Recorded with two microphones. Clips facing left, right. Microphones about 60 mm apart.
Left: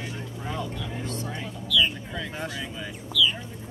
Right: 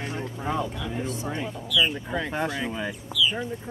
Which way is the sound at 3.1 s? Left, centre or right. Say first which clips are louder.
Left 2 dB; centre.